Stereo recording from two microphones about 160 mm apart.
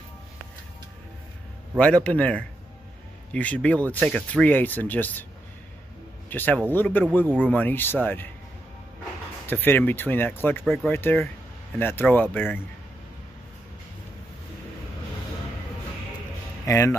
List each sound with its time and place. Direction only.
1.8 s speech: 5° left (ahead or behind)
6.3 s speech: 10° left (ahead or behind)
9.5 s speech: 10° left (ahead or behind)
16.6 s speech: 20° left (ahead or behind)